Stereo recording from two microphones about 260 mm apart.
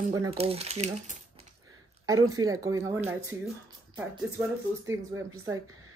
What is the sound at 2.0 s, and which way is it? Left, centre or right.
Speech, centre.